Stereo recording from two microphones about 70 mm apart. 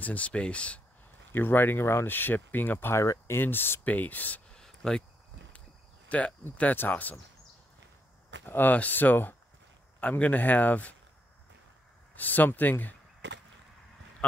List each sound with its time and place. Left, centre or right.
0.0 s speech: left
1.3 s speech: left
2.9 s speech: left
3.3 s speech: left
4.5 s a sound: centre
6.0 s speech: centre
8.5 s speech: left
12.2 s speech: left